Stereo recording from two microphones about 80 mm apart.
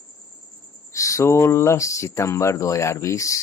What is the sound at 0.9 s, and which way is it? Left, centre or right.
Speech, left.